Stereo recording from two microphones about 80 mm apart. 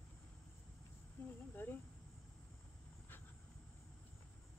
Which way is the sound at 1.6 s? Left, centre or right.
Left.